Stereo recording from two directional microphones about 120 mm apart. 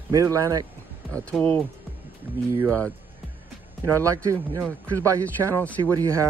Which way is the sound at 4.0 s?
25° right (ahead or behind).